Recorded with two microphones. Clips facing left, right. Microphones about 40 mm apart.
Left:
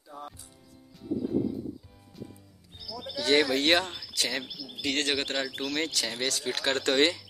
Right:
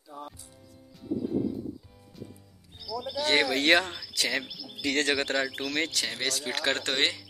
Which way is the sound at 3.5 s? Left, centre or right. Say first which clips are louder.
Right 2 dB; right.